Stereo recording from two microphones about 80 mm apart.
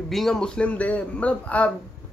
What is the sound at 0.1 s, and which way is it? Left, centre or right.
A man's voice, centre.